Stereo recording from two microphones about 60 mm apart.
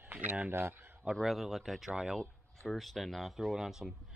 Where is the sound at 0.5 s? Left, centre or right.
Right.